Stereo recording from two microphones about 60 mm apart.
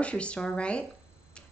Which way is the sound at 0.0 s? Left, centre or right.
Centre.